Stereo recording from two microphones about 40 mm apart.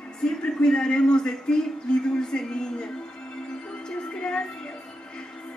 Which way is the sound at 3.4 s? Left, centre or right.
Centre.